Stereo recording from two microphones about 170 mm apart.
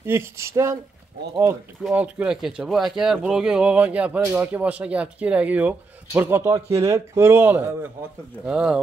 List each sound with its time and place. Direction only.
0.0 s speech: 15° right (ahead or behind)
1.8 s speech: 5° right (ahead or behind)